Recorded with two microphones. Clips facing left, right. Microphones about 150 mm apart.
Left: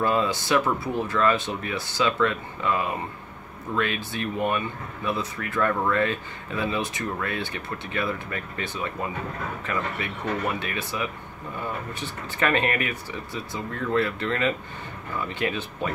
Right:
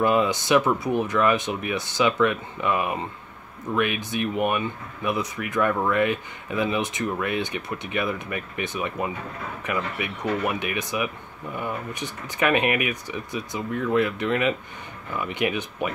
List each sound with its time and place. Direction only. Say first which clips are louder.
0.0 s speech: right 3 dB; 15° right (ahead or behind)